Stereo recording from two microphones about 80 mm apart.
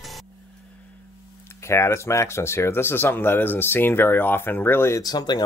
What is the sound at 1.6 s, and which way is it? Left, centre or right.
Speech, left.